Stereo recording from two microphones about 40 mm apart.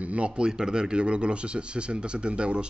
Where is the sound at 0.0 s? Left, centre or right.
Right.